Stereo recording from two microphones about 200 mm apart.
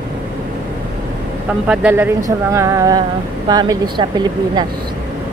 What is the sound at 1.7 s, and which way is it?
Speech, 5° right (ahead or behind).